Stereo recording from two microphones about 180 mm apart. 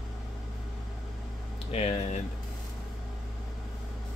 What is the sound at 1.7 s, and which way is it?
Speech, 35° left (ahead or behind).